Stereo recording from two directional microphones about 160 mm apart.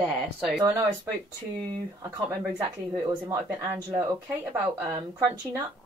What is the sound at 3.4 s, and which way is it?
A woman's voice, 15° right (ahead or behind).